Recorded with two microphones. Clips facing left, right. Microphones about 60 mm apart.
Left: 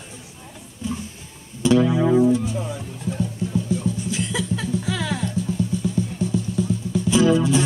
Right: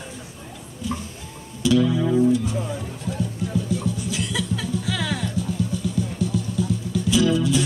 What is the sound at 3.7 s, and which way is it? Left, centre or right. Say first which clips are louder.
Music: left 1 dB; left.